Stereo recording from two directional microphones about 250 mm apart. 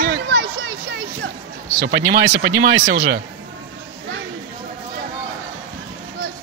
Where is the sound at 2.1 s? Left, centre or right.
Right.